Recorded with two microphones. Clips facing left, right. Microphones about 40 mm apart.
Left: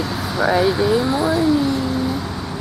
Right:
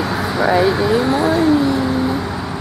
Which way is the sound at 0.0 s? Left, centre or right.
Right.